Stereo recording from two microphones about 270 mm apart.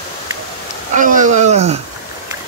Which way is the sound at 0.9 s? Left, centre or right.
Right.